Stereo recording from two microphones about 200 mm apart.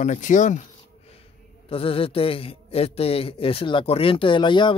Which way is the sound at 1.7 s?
30° left (ahead or behind).